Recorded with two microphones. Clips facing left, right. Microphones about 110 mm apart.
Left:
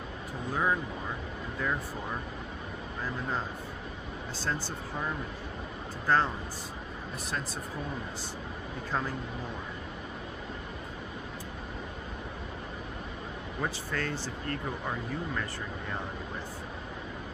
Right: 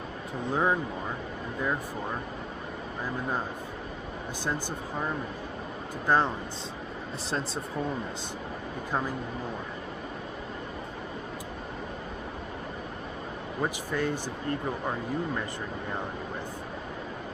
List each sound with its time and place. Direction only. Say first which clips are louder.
0.5 s speech: right 3 dB; 25° right (ahead or behind)
4.5 s speech: right 2 dB; 15° right (ahead or behind)
13.6 s speech: right 4 dB; 15° right (ahead or behind)